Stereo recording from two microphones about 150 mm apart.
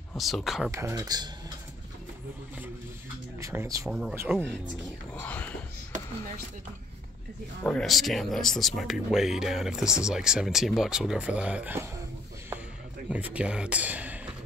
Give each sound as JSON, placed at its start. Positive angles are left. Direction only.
{"t": 0.2, "sound": "speech", "side_deg": 0}
{"t": 0.7, "sound": "speech", "side_deg": -20}
{"t": 3.3, "sound": "speech", "side_deg": -20}
{"t": 7.6, "sound": "speech", "side_deg": 5}
{"t": 13.1, "sound": "speech", "side_deg": -10}